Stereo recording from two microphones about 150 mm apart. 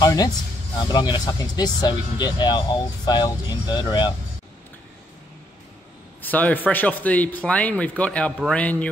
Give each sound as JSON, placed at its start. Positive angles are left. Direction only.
{"t": 0.0, "sound": "speech", "side_deg": 25}
{"t": 6.2, "sound": "a man's voice", "side_deg": 10}